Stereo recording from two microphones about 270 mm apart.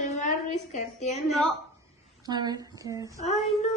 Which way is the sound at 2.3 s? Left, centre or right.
Centre.